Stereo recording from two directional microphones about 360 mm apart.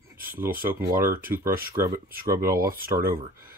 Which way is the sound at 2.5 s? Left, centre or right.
Right.